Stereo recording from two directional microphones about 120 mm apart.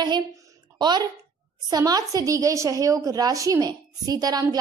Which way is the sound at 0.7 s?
35° right (ahead or behind).